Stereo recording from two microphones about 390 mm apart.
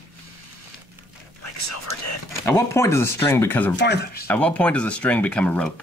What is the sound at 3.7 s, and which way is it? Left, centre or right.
Speech, left.